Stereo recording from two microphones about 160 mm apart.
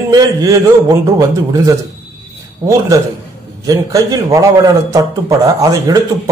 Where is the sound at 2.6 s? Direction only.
25° right (ahead or behind).